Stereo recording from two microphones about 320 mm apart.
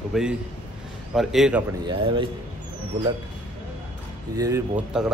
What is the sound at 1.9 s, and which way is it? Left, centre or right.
Speech, centre.